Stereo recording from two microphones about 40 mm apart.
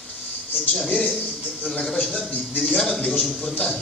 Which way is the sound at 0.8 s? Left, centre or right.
Left.